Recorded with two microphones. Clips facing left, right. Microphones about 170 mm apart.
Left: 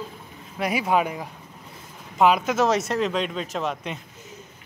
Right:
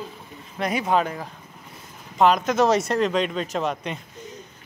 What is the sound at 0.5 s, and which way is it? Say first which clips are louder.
Speech: even; 5° left (ahead or behind).